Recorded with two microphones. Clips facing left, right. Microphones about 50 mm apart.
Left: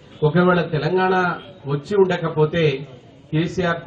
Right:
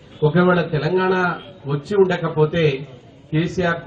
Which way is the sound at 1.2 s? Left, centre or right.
Centre.